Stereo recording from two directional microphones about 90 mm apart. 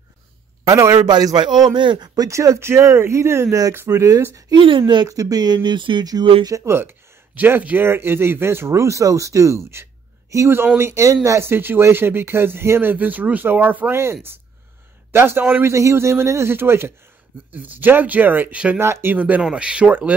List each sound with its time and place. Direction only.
0.7 s speech: 35° right (ahead or behind)
1.0 s speech: 50° right (ahead or behind)
2.1 s speech: 35° right (ahead or behind)
4.6 s speech: 70° right (ahead or behind)
5.0 s speech: 40° right (ahead or behind); by 6.0 s 60° right (ahead or behind)
6.4 s speech: 35° right (ahead or behind)
15.1 s speech: 25° right (ahead or behind)
15.7 s speech: 35° right (ahead or behind); by 18.8 s 15° right (ahead or behind)
18.8 s speech: 25° right (ahead or behind)